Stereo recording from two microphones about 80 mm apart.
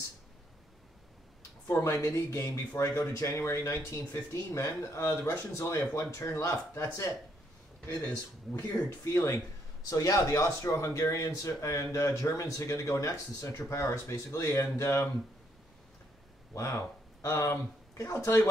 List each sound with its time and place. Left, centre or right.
1.7 s speech: left
7.8 s speech: left
16.5 s speech: left